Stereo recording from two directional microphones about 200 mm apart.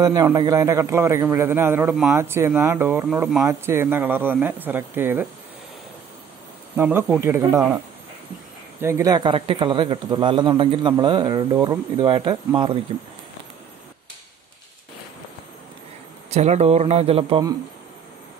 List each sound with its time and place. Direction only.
0.0 s a man's voice: 20° right (ahead or behind)
6.8 s a man's voice: 10° right (ahead or behind)
8.8 s speech: 15° right (ahead or behind)
16.3 s speech: 35° right (ahead or behind)